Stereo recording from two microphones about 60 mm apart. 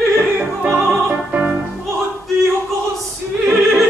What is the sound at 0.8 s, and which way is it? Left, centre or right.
Music, centre.